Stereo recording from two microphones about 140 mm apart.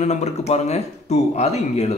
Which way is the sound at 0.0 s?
50° left (ahead or behind).